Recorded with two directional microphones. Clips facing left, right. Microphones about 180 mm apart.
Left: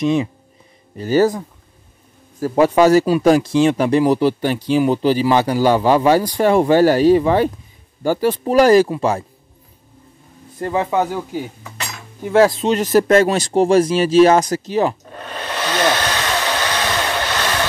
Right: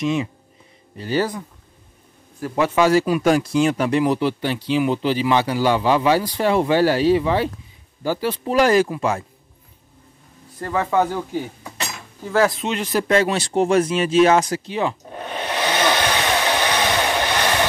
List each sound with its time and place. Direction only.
0.0 s speech: 35° left (ahead or behind)
2.4 s speech: 40° left (ahead or behind)
10.6 s speech: 20° left (ahead or behind)
12.2 s speech: 25° left (ahead or behind)
12.7 s speech: 45° left (ahead or behind)
15.5 s hair dryer: 15° right (ahead or behind)